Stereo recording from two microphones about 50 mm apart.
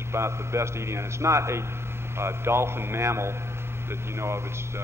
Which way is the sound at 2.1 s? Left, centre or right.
Right.